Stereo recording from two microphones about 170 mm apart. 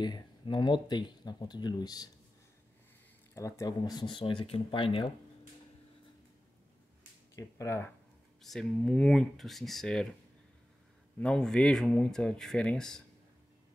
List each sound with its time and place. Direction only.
0.0 s speech: 25° left (ahead or behind)
3.3 s speech: 20° left (ahead or behind)
7.3 s speech: 20° left (ahead or behind)
8.4 s speech: centre (ahead or behind)
11.1 s speech: 5° left (ahead or behind)